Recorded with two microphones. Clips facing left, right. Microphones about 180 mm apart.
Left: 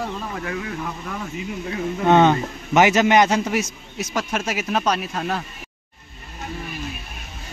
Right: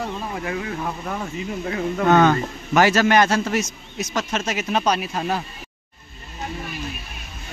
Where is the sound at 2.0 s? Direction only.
25° left (ahead or behind); by 5.4 s 5° right (ahead or behind).